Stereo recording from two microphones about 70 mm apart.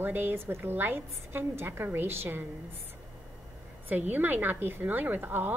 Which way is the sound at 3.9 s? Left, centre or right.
Right.